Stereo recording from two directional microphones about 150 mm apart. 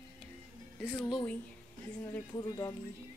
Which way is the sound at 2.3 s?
25° left (ahead or behind).